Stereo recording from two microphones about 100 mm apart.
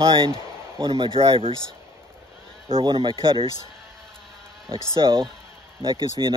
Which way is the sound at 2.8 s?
55° right (ahead or behind).